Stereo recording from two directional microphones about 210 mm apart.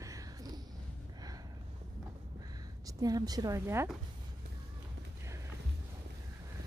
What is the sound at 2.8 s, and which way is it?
A woman's voice, 20° right (ahead or behind).